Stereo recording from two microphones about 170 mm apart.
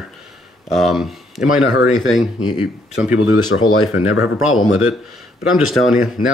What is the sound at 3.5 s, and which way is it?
Speech, 90° left.